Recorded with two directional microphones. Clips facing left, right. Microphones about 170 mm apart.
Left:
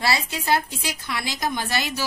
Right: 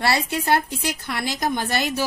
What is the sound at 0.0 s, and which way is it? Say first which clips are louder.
A woman's voice: right 3 dB; 65° right (ahead or behind).